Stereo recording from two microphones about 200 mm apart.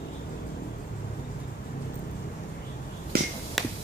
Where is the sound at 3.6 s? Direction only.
Centre (ahead or behind).